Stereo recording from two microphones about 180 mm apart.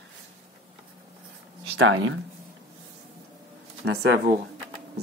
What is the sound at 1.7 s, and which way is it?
Speech, 90° right.